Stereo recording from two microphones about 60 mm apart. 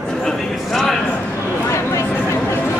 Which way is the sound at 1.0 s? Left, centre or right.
Left.